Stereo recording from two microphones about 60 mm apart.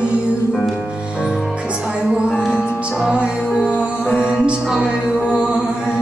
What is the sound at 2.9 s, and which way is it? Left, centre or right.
Music, centre.